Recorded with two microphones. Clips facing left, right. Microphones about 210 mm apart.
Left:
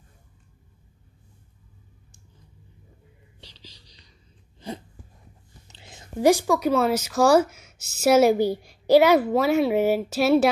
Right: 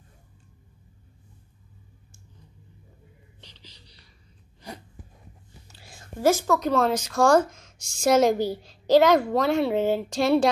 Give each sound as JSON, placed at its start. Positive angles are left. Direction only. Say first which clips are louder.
{"t": 3.3, "sound": "music", "louder": "left 4 dB", "side_deg": 10}
{"t": 5.7, "sound": "a woman's voice", "louder": "left 1 dB", "side_deg": 20}